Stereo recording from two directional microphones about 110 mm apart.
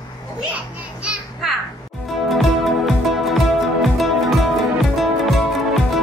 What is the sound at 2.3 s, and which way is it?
Music, centre (ahead or behind).